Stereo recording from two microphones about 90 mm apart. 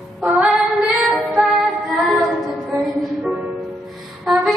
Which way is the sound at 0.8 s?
5° right (ahead or behind).